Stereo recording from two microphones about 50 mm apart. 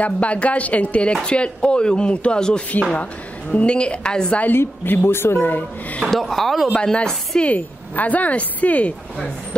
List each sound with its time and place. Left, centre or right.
0.0 s a woman's voice: left
4.6 s speech: left
5.4 s speech: left
6.0 s speech: centre
6.7 s a woman's voice: centre
7.5 s speech: left